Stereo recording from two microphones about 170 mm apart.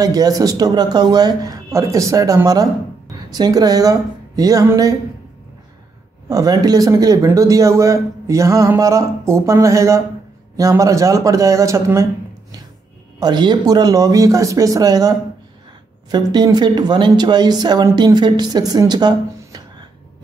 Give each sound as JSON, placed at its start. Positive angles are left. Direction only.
{"t": 0.0, "sound": "speech", "side_deg": -20}
{"t": 6.2, "sound": "speech", "side_deg": -20}
{"t": 13.2, "sound": "speech", "side_deg": -25}